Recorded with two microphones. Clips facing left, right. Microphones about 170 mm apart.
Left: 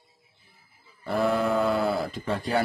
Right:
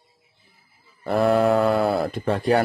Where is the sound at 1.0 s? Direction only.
60° right (ahead or behind).